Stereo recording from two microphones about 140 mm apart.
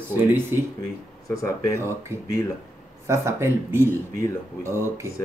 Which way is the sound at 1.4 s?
20° left (ahead or behind).